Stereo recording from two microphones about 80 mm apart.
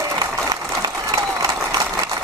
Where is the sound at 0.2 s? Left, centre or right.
Right.